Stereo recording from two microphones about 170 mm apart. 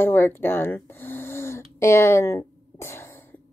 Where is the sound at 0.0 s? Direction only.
10° left (ahead or behind).